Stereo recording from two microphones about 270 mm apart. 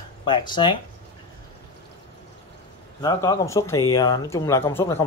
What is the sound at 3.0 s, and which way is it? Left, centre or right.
Speech, centre.